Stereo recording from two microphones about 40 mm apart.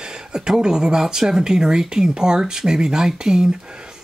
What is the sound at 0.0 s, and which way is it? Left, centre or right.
Speech, centre.